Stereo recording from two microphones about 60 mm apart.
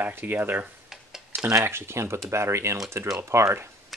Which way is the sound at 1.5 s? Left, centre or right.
Right.